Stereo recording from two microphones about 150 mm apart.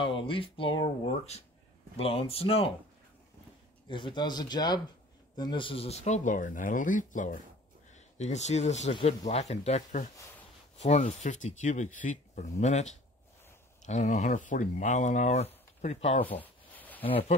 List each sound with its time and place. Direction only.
0.0 s speech: 35° left (ahead or behind)
3.9 s speech: 30° left (ahead or behind)
16.3 s a sound: 10° left (ahead or behind)
17.0 s speech: 40° left (ahead or behind)